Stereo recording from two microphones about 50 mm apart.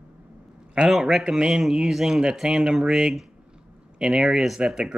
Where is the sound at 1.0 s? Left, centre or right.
Centre.